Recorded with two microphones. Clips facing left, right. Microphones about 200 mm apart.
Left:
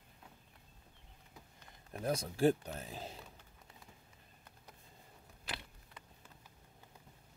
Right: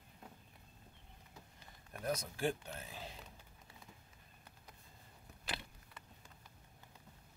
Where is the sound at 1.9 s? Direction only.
30° left (ahead or behind).